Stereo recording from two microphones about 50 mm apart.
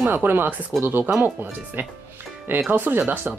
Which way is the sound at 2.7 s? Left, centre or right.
Right.